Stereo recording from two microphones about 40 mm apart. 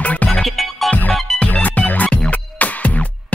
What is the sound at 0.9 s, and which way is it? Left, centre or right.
Music, left.